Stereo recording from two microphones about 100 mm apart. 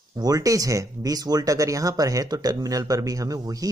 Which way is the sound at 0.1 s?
40° right (ahead or behind).